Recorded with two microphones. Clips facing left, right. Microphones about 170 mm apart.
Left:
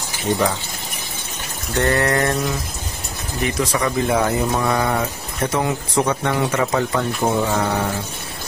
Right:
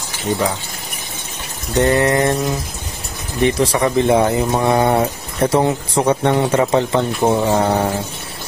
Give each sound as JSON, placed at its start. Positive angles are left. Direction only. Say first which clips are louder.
{"t": 1.8, "sound": "speech", "louder": "right 4 dB", "side_deg": -20}
{"t": 3.4, "sound": "speech", "louder": "right 5 dB", "side_deg": -30}
{"t": 7.2, "sound": "mantra", "louder": "right 5 dB", "side_deg": -30}